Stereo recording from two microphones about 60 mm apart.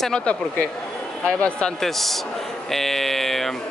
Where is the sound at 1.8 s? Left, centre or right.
Centre.